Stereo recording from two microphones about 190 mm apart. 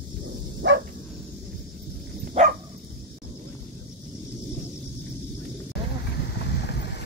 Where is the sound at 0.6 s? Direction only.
65° right (ahead or behind).